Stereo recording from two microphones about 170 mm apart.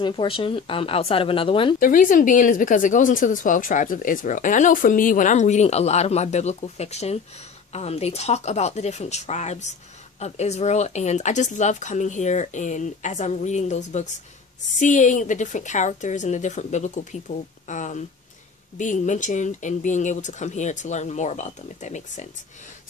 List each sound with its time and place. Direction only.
0.0 s speech: 30° left (ahead or behind)
1.8 s speech: 50° left (ahead or behind)